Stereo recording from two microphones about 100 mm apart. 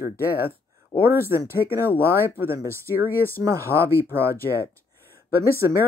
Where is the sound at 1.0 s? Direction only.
25° right (ahead or behind).